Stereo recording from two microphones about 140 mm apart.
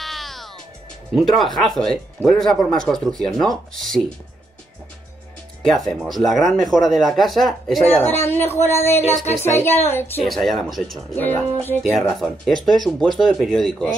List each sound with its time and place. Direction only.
0.0 s music: centre (ahead or behind)
1.1 s speech: centre (ahead or behind)
5.6 s speech: 5° left (ahead or behind)
7.8 s a woman's voice: 15° left (ahead or behind)
9.1 s speech: 55° left (ahead or behind)
9.4 s a woman's voice: 20° left (ahead or behind)
10.2 s speech: centre (ahead or behind)
11.1 s a woman's voice: 15° left (ahead or behind)
12.1 s speech: centre (ahead or behind)